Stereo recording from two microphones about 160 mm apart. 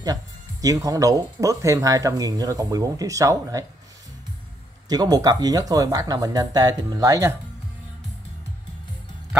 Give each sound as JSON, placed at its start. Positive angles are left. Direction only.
{"t": 0.0, "sound": "speech", "side_deg": -25}
{"t": 4.8, "sound": "speech", "side_deg": -25}